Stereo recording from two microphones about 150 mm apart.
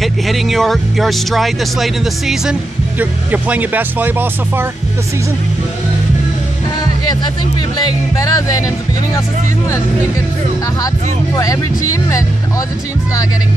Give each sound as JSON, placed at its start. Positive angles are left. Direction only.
{"t": 0.0, "sound": "speech", "side_deg": 0}
{"t": 8.2, "sound": "speech", "side_deg": 25}
{"t": 11.3, "sound": "speech", "side_deg": 20}